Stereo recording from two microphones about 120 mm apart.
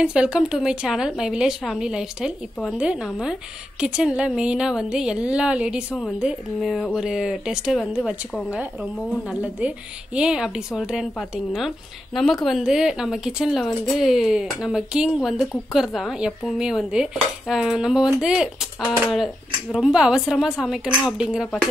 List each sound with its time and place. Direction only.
0.0 s a woman's voice: 5° right (ahead or behind)
9.3 s a woman's voice: 10° right (ahead or behind)